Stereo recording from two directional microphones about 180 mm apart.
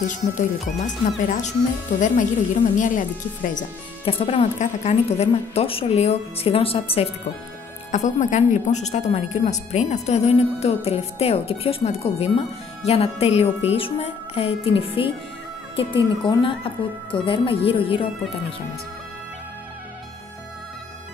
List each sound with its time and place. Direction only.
0.0 s speech: 45° left (ahead or behind)
4.0 s a woman's voice: 30° left (ahead or behind)
7.9 s a woman's voice: 40° left (ahead or behind)